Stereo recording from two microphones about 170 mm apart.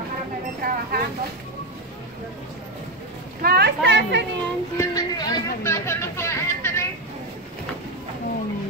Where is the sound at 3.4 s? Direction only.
70° right (ahead or behind); by 4.2 s 90° right.